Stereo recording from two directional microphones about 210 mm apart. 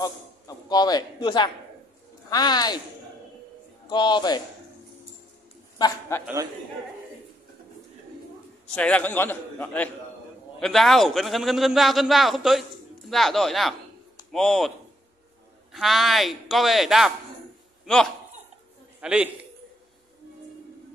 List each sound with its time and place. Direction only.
0.0 s a man's voice: 20° left (ahead or behind)
3.9 s a man's voice: 20° left (ahead or behind)
5.8 s a man's voice: 15° left (ahead or behind)
6.2 s a man's voice: 15° right (ahead or behind)
8.7 s a man's voice: 5° left (ahead or behind)
15.7 s a man's voice: centre (ahead or behind)